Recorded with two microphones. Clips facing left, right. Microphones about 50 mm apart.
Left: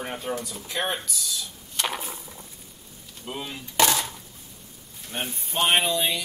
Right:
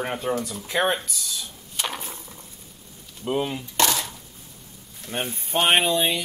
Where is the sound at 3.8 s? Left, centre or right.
Centre.